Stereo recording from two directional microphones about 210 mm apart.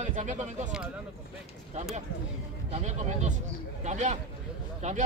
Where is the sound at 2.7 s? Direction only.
30° right (ahead or behind).